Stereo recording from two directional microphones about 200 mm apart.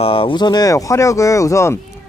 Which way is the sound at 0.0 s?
25° left (ahead or behind).